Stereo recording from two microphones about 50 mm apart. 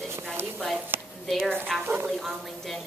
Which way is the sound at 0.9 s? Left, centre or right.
Right.